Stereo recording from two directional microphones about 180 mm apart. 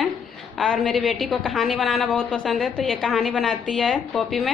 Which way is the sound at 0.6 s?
Centre (ahead or behind).